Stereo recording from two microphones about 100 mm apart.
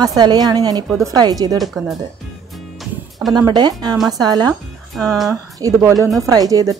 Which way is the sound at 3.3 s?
45° right (ahead or behind).